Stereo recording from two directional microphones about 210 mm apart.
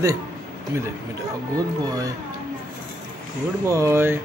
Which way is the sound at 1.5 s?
15° right (ahead or behind).